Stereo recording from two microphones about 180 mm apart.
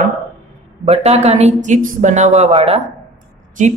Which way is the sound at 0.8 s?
35° right (ahead or behind).